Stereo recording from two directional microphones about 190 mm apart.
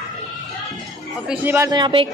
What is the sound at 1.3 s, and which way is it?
Speech, 10° right (ahead or behind).